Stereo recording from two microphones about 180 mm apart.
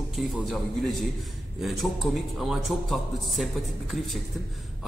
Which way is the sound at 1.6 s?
Centre (ahead or behind).